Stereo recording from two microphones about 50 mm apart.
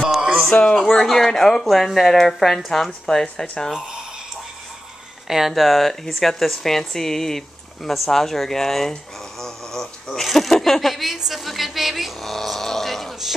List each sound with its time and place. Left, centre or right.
0.0 s music: centre
0.5 s speech: centre
5.3 s speech: centre
11.1 s a sound: centre